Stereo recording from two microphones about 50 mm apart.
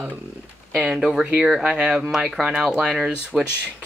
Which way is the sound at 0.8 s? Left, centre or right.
Centre.